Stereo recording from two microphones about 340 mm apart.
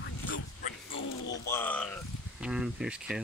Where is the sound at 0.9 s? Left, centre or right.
Left.